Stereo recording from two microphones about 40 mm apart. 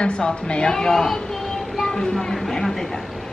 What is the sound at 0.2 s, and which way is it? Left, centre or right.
A woman's voice, left.